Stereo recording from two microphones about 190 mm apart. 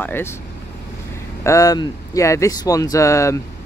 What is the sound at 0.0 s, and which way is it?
Speech, 10° left (ahead or behind).